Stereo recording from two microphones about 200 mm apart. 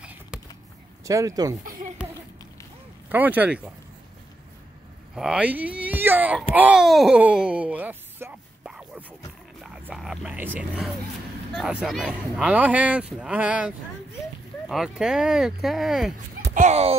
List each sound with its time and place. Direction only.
0.0 s a sound: 5° right (ahead or behind)
1.0 s speech: 15° right (ahead or behind)
3.1 s speech: 10° right (ahead or behind)
5.1 s speech: 5° right (ahead or behind)
6.5 s a sound: 5° right (ahead or behind)
11.5 s speech: centre (ahead or behind)
16.5 s speech: 35° right (ahead or behind)